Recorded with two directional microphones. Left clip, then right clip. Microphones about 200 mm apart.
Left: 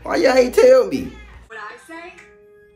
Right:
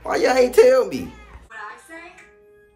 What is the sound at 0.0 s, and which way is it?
A man's voice, 10° right (ahead or behind).